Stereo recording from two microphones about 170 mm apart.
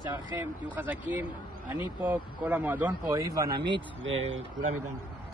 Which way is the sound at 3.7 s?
90° right.